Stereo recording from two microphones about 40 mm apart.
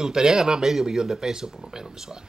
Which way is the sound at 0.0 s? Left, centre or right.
Centre.